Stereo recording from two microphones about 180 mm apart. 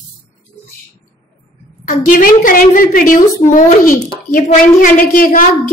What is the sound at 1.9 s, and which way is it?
A woman's voice, 45° left (ahead or behind).